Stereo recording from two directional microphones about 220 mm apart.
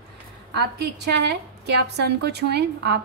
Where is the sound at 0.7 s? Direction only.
50° right (ahead or behind).